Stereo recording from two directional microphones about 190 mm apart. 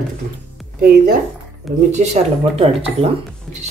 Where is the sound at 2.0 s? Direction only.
40° right (ahead or behind).